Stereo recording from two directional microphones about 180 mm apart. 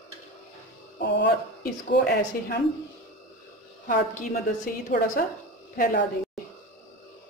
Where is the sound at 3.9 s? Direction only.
50° left (ahead or behind).